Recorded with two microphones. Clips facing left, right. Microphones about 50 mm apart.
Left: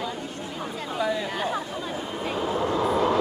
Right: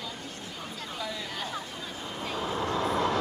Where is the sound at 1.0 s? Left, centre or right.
Left.